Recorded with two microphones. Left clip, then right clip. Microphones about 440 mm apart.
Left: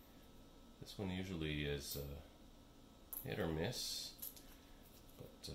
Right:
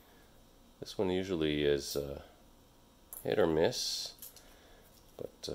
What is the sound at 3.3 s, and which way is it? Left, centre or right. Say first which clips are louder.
Speech: right 14 dB; centre.